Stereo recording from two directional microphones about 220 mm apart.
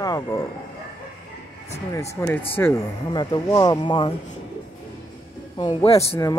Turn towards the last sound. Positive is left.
turn(degrees=25)  # may be behind; listen again after turning